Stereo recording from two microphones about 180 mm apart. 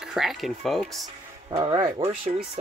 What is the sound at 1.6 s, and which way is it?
Speech, 20° right (ahead or behind).